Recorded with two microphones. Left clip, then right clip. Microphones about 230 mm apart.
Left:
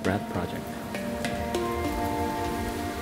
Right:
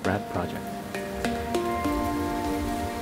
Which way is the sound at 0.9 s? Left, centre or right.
Centre.